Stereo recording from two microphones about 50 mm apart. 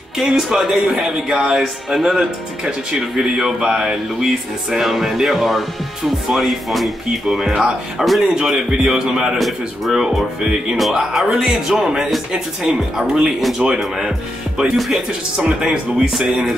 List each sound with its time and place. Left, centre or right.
0.2 s speech: centre
3.2 s music: centre
8.4 s speech: centre
10.8 s music: centre
11.2 s speech: centre